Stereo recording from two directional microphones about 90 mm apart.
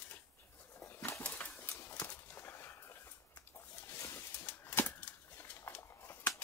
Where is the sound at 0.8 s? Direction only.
25° left (ahead or behind).